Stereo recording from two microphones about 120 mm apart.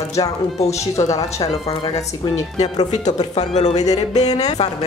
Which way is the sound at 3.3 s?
65° left (ahead or behind).